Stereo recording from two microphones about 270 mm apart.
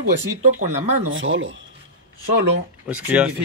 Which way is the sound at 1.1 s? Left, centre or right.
Right.